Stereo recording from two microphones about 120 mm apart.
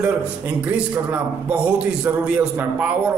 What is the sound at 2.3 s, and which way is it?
Speech, 10° right (ahead or behind).